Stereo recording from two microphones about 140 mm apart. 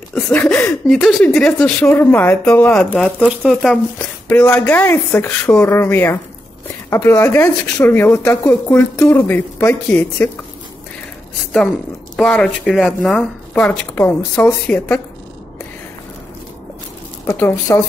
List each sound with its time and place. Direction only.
0.1 s speech: 15° left (ahead or behind)
0.8 s speech: 5° left (ahead or behind)
3.2 s speech: 5° right (ahead or behind)
4.3 s speech: 15° left (ahead or behind)
12.2 s speech: 5° left (ahead or behind)
17.3 s speech: 15° left (ahead or behind)